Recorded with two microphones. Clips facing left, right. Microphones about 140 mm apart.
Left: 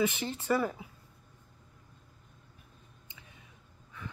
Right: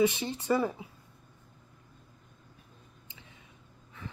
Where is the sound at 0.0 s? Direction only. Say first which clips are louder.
Right 4 dB; 20° right (ahead or behind).